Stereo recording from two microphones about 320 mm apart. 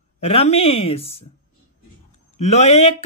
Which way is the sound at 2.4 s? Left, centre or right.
Left.